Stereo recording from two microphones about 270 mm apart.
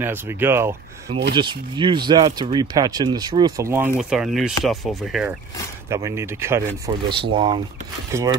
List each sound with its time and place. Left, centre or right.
0.0 s speech: centre